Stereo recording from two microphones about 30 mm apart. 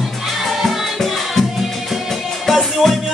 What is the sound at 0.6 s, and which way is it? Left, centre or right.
Music, centre.